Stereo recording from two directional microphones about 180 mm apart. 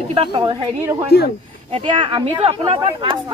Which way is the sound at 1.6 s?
30° right (ahead or behind).